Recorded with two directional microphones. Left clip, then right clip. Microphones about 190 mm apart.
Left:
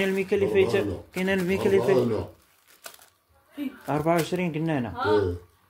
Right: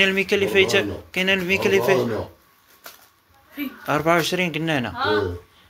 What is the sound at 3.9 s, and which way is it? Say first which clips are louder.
Speech: right 5 dB; 10° left (ahead or behind).